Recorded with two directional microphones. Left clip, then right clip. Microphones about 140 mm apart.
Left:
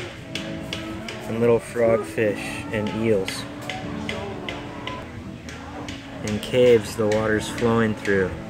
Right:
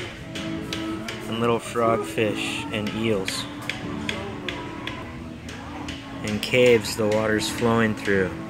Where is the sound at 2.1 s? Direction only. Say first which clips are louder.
Left 1 dB; 25° left (ahead or behind).